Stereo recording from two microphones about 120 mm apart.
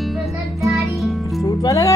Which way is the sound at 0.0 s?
Centre (ahead or behind).